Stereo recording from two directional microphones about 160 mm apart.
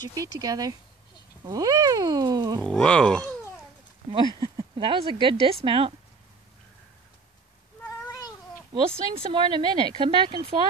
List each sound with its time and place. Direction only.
0.1 s speech: 20° right (ahead or behind)
2.6 s speech: 5° left (ahead or behind)
4.4 s speech: 30° right (ahead or behind)
9.1 s speech: 35° right (ahead or behind)